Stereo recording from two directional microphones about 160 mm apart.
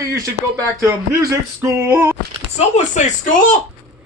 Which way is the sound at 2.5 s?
45° left (ahead or behind).